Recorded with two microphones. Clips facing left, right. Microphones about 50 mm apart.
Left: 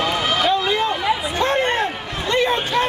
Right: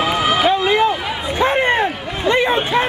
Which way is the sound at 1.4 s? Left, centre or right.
Centre.